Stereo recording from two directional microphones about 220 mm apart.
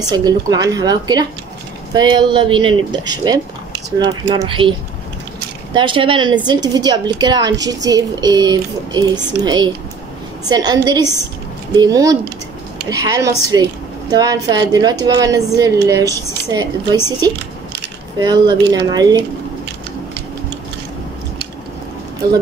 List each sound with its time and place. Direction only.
0.0 s a woman's voice: 20° right (ahead or behind)